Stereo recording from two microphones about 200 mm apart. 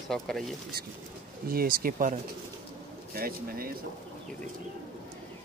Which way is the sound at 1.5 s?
45° right (ahead or behind).